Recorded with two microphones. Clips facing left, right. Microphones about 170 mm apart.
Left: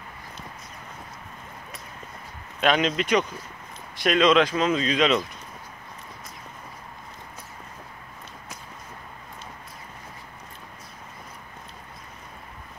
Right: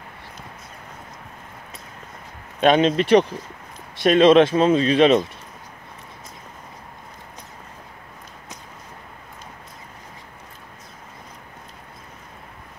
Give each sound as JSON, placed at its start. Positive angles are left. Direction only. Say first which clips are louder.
{"t": 2.6, "sound": "speech", "louder": "right 6 dB", "side_deg": -25}